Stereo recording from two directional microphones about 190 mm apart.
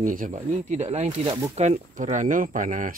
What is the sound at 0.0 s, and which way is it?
Speech, 45° right (ahead or behind).